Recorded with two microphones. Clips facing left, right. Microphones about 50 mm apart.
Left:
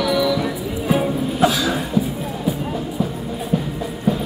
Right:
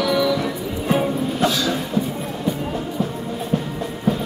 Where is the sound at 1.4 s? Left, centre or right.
Centre.